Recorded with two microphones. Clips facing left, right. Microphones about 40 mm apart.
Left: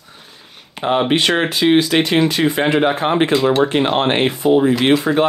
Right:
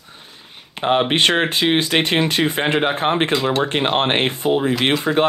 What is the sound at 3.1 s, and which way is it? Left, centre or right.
Speech, centre.